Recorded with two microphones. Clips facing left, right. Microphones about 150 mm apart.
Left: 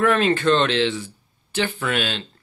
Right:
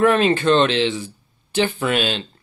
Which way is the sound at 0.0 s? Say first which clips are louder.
Right 2 dB; 20° right (ahead or behind).